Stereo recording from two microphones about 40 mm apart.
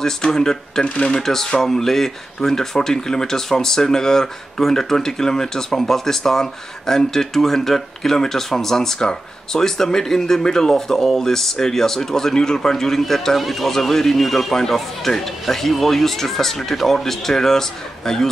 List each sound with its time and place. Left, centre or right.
0.0 s speech: centre
1.2 s speech: centre